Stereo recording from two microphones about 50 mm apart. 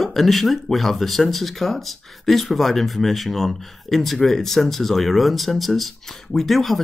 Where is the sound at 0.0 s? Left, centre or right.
Centre.